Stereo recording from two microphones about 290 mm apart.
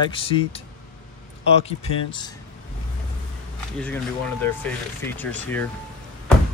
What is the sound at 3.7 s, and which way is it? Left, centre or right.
Speech, centre.